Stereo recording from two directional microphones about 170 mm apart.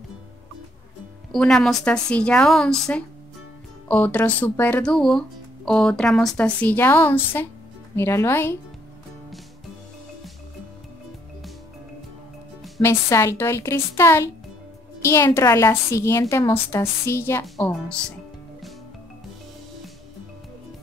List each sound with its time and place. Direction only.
1.3 s a woman's voice: 5° left (ahead or behind)
12.8 s a woman's voice: 15° left (ahead or behind)